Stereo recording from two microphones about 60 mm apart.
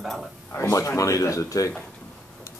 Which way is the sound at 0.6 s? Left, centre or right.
Left.